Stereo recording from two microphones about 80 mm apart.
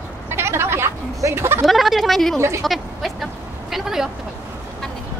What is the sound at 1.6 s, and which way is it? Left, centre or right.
Speech, centre.